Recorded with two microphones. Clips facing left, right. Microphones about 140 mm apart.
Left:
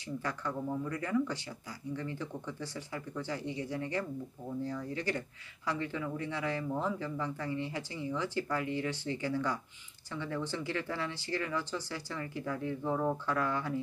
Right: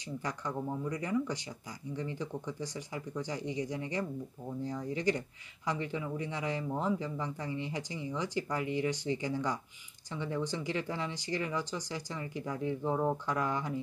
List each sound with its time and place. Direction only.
0.2 s speech: 15° right (ahead or behind)